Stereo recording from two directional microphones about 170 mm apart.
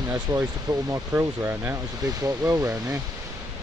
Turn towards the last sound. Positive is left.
turn(degrees=-20)  # may be behind; listen again after turning